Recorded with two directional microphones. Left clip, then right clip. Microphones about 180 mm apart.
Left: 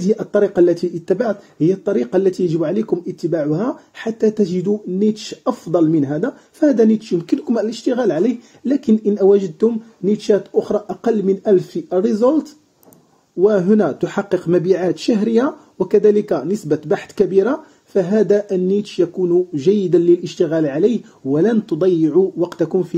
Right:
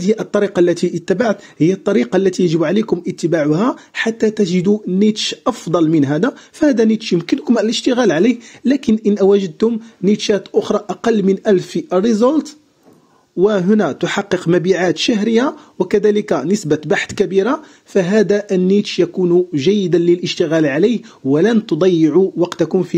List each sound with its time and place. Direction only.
0.0 s speech: 40° right (ahead or behind)